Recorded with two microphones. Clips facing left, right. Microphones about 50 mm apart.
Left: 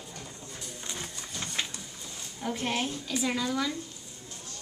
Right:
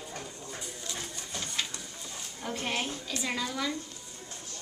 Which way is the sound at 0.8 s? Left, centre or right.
Left.